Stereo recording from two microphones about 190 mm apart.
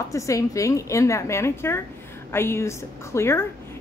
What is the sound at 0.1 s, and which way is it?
A woman's voice, 15° left (ahead or behind).